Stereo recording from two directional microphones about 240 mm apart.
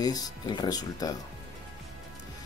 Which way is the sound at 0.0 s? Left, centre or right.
Centre.